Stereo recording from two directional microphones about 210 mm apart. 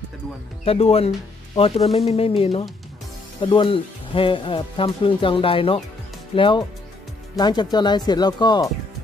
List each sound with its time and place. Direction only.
0.7 s speech: 30° left (ahead or behind)